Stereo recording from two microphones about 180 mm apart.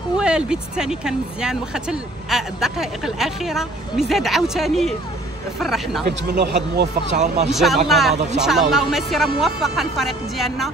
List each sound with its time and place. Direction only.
0.2 s speech: 5° right (ahead or behind)
6.0 s speech: 65° right (ahead or behind)
7.1 s speech: 40° right (ahead or behind)
7.5 s speech: centre (ahead or behind)